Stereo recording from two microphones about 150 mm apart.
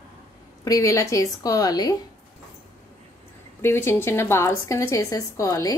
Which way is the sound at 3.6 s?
15° left (ahead or behind).